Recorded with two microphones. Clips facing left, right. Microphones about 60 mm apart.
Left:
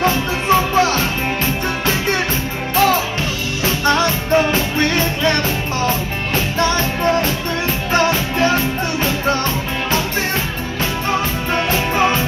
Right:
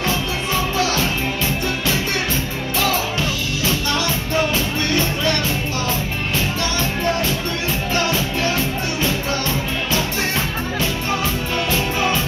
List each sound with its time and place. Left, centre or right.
0.0 s music: left
3.6 s music: left
7.9 s music: left
11.5 s music: left